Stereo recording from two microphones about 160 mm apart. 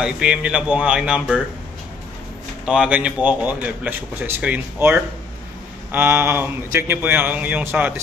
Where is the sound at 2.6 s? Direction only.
5° right (ahead or behind).